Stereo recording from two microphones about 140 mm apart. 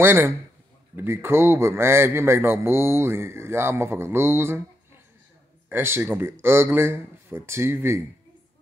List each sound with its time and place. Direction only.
0.0 s a man's voice: 15° right (ahead or behind)
5.7 s a man's voice: 15° right (ahead or behind)